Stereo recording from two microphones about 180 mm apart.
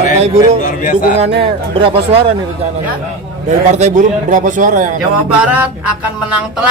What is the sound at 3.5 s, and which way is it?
A man's voice, 40° right (ahead or behind).